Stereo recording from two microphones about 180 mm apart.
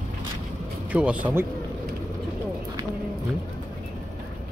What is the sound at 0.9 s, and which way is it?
Speech, 5° right (ahead or behind).